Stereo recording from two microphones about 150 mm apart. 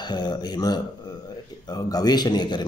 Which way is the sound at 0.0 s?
25° left (ahead or behind).